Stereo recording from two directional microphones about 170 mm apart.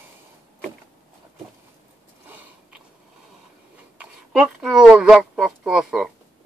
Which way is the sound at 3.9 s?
5° right (ahead or behind).